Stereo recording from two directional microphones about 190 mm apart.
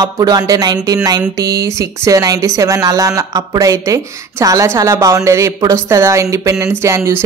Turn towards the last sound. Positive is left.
turn(degrees=-15)  # may be behind; listen again after turning